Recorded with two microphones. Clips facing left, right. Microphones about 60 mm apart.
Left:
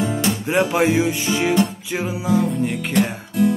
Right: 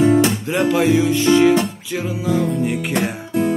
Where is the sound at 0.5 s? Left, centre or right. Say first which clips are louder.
Right 1 dB; left.